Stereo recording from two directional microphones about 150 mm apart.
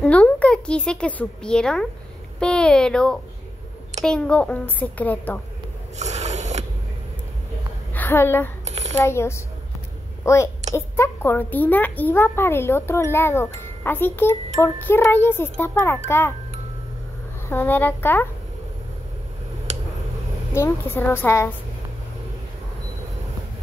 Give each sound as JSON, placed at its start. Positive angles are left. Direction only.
{"t": 0.0, "sound": "a child's voice", "side_deg": 10}
{"t": 5.9, "sound": "a sound", "side_deg": -50}
{"t": 7.9, "sound": "a woman's voice", "side_deg": 15}
{"t": 8.6, "sound": "shuffling cards", "side_deg": -45}
{"t": 9.0, "sound": "a child's voice", "side_deg": 15}
{"t": 17.5, "sound": "a child's voice", "side_deg": 15}
{"t": 19.7, "sound": "a sound", "side_deg": -50}
{"t": 20.5, "sound": "a child's voice", "side_deg": 15}